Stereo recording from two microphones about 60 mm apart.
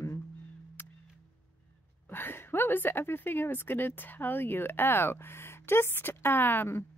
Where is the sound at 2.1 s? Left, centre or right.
Left.